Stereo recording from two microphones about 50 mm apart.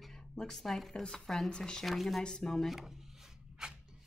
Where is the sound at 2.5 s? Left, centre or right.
Centre.